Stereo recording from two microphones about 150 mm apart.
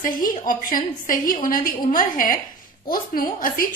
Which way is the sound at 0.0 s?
65° left (ahead or behind).